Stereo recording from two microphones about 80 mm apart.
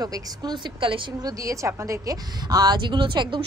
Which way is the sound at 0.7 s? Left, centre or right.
Right.